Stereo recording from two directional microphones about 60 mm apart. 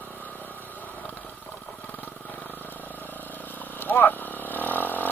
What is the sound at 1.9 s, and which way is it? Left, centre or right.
Vehicle, left.